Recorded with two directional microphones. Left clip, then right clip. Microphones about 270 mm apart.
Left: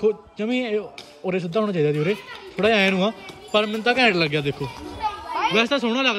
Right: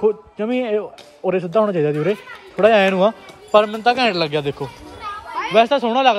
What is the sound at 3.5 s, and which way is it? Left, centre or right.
A man's voice, centre.